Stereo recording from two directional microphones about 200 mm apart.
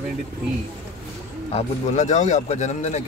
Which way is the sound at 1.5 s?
35° left (ahead or behind).